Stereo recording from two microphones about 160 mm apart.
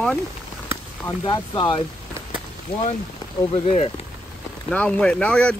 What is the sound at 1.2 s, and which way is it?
Speech, 30° left (ahead or behind).